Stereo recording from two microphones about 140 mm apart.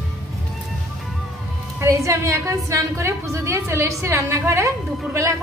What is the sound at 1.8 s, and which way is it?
A woman's voice, 20° right (ahead or behind).